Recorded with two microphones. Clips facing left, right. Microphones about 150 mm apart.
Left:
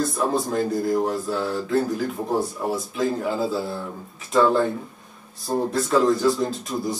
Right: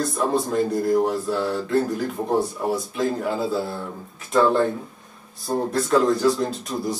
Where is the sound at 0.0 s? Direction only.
Centre (ahead or behind).